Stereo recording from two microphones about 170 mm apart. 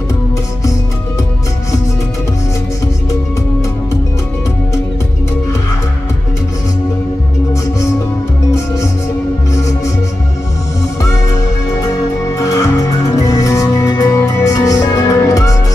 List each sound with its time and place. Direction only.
9.5 s music: 20° left (ahead or behind)
11.0 s music: 20° left (ahead or behind)
12.4 s music: 20° left (ahead or behind)